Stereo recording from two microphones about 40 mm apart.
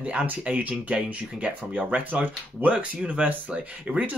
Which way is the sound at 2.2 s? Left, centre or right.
Right.